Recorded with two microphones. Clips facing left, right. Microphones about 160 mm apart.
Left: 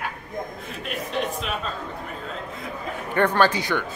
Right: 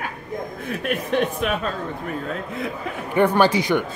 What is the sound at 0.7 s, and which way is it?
Speech, 60° right (ahead or behind).